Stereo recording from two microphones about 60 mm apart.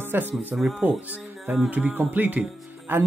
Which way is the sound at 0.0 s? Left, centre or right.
Right.